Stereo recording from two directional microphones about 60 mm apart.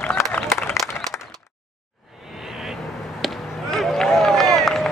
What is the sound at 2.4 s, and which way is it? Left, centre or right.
Vehicle, centre.